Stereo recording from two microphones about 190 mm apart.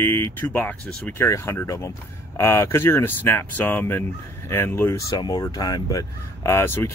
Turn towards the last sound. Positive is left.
turn(degrees=15)  # may be behind; listen again after turning